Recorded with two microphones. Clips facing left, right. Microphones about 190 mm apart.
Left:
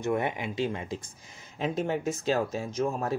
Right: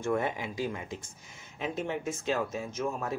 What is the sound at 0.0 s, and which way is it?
Speech, 15° left (ahead or behind).